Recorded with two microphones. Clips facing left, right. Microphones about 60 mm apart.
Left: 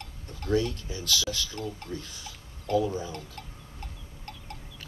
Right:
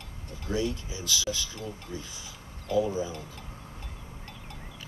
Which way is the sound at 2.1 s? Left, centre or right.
Left.